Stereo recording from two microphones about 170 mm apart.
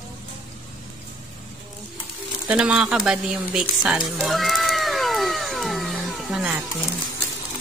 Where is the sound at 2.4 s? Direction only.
5° right (ahead or behind).